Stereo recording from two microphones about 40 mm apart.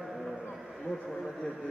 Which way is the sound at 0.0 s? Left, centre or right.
Centre.